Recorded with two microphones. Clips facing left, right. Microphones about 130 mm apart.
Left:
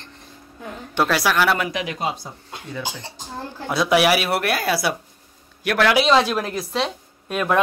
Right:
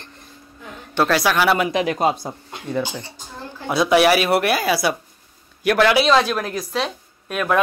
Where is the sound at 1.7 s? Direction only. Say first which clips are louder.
Right 7 dB; 45° right (ahead or behind).